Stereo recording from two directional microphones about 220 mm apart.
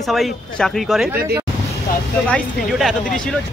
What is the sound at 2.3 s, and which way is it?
Speech, centre (ahead or behind).